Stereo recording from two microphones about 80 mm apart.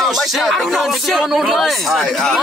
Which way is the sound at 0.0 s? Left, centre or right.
Centre.